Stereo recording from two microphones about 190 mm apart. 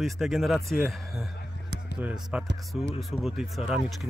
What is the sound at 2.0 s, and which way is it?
Speech, 5° right (ahead or behind).